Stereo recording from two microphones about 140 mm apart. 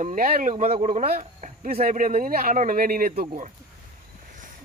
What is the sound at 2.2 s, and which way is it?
Speech, 85° right.